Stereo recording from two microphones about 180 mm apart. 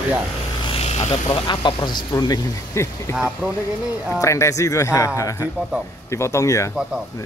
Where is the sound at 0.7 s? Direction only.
35° left (ahead or behind).